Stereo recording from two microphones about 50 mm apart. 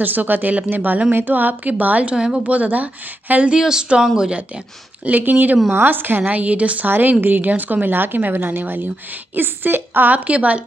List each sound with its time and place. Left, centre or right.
0.0 s a woman's voice: right
2.1 s speech: centre
2.4 s a woman's voice: right
3.5 s speech: centre
5.0 s a woman's voice: right
6.2 s a woman's voice: right
6.9 s a woman's voice: right